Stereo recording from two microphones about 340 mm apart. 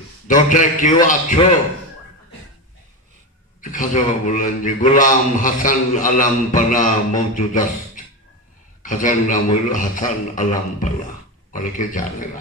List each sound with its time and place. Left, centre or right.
0.3 s a man's voice: left
3.7 s a man's voice: left